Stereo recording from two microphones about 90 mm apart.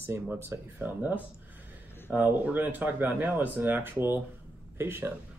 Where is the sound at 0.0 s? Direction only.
25° right (ahead or behind).